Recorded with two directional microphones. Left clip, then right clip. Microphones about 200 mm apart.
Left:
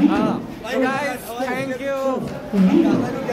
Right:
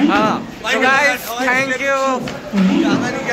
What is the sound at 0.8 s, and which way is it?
A man's voice, 10° right (ahead or behind).